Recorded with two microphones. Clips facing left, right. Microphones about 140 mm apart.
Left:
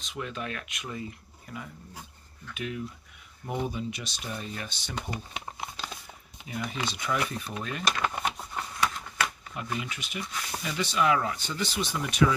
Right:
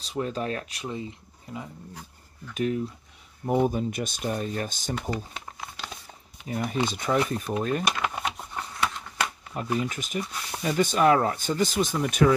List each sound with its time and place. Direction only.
0.0 s speech: 35° right (ahead or behind)
2.5 s speech: 40° right (ahead or behind)
5.1 s a sound: 20° left (ahead or behind)
6.4 s speech: 40° right (ahead or behind)
7.8 s a sound: 10° right (ahead or behind)
9.5 s speech: 35° right (ahead or behind)